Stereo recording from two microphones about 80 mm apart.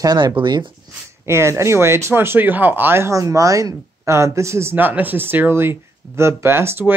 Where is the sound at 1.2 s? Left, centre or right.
Right.